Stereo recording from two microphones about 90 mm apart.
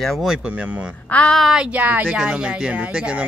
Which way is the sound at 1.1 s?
10° left (ahead or behind).